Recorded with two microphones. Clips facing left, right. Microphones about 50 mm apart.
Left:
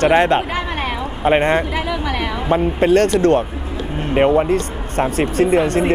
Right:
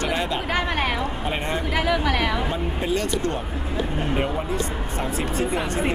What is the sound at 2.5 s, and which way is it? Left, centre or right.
Speech, left.